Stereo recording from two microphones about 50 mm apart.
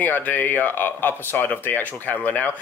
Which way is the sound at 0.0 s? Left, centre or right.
Left.